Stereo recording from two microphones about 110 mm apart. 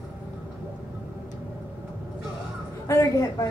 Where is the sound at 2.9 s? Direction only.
30° left (ahead or behind).